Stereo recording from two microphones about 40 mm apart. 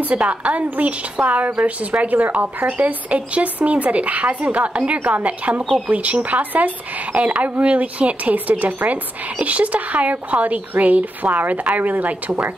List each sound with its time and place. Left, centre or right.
0.1 s speech: right